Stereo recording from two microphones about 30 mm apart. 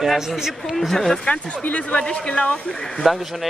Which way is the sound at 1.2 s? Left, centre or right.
Left.